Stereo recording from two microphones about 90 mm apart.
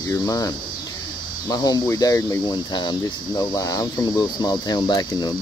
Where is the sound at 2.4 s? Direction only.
55° left (ahead or behind).